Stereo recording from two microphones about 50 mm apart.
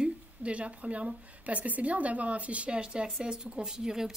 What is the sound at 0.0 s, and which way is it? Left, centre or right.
Speech, right.